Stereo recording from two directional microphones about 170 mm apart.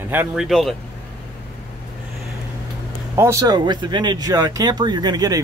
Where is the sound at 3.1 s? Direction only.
20° right (ahead or behind).